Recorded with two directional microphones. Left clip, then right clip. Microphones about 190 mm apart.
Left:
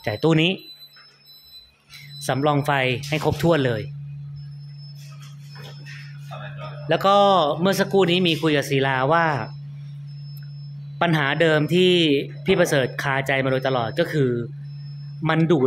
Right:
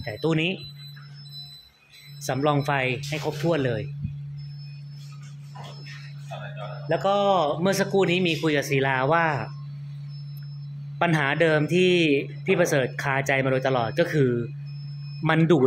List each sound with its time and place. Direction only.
0.0 s speech: 25° left (ahead or behind)
2.2 s a man's voice: 10° left (ahead or behind)
6.9 s speech: 25° left (ahead or behind)
11.0 s a man's voice: 10° left (ahead or behind)